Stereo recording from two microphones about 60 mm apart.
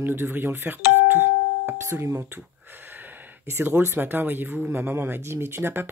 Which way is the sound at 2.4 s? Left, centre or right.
Right.